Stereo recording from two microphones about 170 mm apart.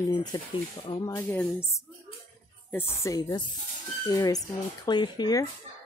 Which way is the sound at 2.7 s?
15° left (ahead or behind).